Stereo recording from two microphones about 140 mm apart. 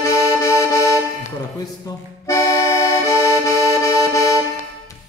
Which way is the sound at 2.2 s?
20° left (ahead or behind).